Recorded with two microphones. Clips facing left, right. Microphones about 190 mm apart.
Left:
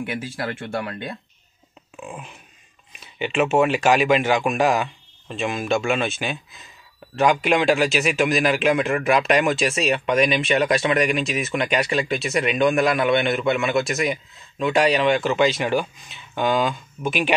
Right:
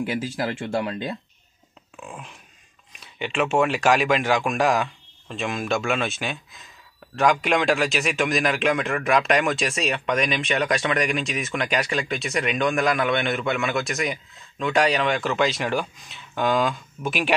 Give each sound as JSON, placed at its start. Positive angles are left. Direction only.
{"t": 0.4, "sound": "speech", "side_deg": -25}
{"t": 2.0, "sound": "a sound", "side_deg": 5}
{"t": 2.9, "sound": "a man's voice", "side_deg": 5}